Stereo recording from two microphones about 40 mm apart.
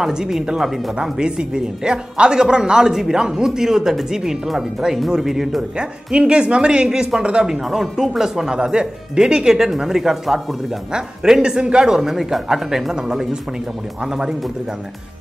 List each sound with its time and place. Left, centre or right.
0.0 s speech: centre
5.8 s speech: right; by 10.4 s centre
10.9 s speech: centre